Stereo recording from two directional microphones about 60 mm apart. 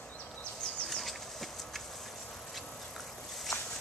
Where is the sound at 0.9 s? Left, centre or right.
Centre.